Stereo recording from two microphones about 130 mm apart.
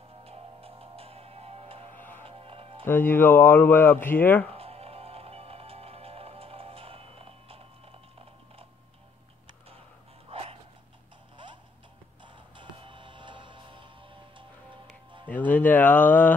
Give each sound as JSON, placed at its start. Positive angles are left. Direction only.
{"t": 0.2, "sound": "music", "side_deg": -50}
{"t": 2.0, "sound": "music", "side_deg": 15}
{"t": 2.2, "sound": "music", "side_deg": -45}
{"t": 2.8, "sound": "speech", "side_deg": 15}
{"t": 4.5, "sound": "music", "side_deg": -50}
{"t": 10.3, "sound": "a sound", "side_deg": -45}
{"t": 12.5, "sound": "music", "side_deg": -40}
{"t": 15.2, "sound": "a sound", "side_deg": 10}